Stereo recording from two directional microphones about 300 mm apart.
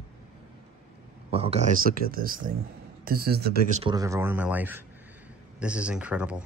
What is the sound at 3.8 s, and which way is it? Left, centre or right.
Speech, centre.